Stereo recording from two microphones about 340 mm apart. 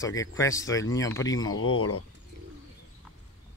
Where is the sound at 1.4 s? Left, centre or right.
Left.